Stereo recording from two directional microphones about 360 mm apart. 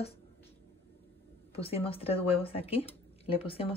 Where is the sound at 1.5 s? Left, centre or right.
Centre.